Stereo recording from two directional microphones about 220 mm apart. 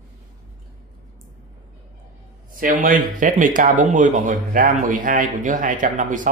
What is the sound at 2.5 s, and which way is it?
Speech, 40° right (ahead or behind).